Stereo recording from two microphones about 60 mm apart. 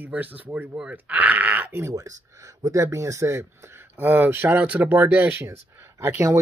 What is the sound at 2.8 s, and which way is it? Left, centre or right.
Speech, right.